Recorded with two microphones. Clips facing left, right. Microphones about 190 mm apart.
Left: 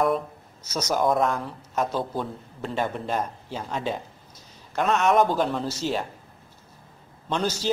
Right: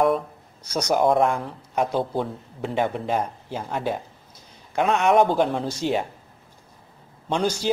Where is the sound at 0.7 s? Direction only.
10° right (ahead or behind).